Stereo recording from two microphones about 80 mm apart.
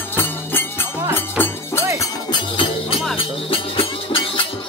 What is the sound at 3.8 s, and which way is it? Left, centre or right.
Music, left.